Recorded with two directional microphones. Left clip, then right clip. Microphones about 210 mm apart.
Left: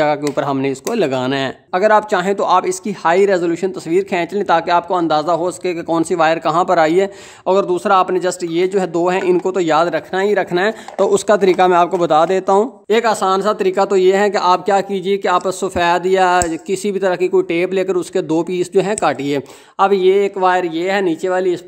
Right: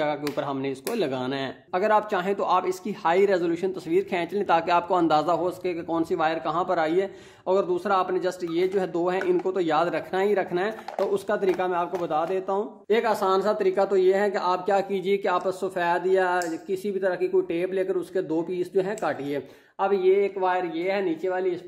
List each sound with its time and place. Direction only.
0.4 s speech: 30° left (ahead or behind); by 21.5 s 55° left (ahead or behind)